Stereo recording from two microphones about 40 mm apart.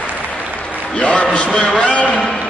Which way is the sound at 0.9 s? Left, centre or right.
Left.